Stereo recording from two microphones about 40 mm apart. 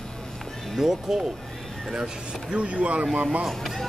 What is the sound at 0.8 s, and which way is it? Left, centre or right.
Speech, centre.